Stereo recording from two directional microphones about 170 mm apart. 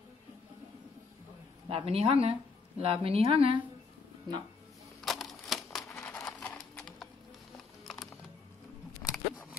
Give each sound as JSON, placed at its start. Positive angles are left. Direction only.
{"t": 1.7, "sound": "speech", "side_deg": -35}
{"t": 5.0, "sound": "a sound", "side_deg": 0}
{"t": 5.9, "sound": "music", "side_deg": 10}
{"t": 7.8, "sound": "typing", "side_deg": 0}
{"t": 9.0, "sound": "scissors", "side_deg": 10}